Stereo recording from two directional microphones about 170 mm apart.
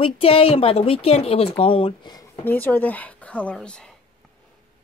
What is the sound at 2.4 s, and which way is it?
Speech, 10° left (ahead or behind).